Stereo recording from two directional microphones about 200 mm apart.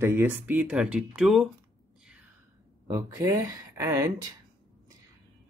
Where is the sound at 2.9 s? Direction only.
15° right (ahead or behind).